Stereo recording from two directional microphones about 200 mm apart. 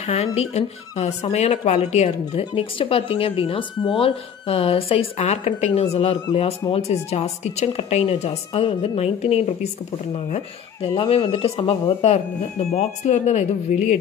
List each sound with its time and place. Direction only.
0.0 s speech: 30° left (ahead or behind)